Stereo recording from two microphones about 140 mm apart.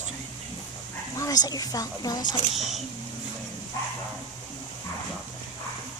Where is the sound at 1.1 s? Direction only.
25° left (ahead or behind).